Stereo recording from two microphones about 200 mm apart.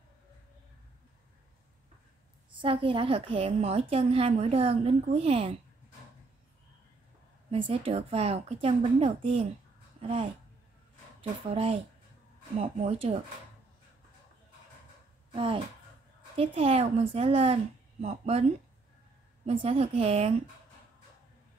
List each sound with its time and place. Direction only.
2.5 s a woman's voice: 25° right (ahead or behind)
7.5 s a woman's voice: 25° right (ahead or behind)
15.3 s a woman's voice: 25° right (ahead or behind)
19.4 s a woman's voice: 30° right (ahead or behind)